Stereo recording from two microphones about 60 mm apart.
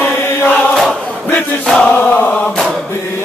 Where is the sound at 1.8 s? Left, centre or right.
Left.